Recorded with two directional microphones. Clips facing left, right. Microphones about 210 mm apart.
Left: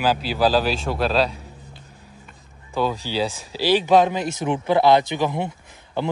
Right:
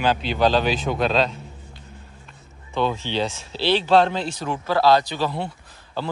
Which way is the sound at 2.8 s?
10° left (ahead or behind).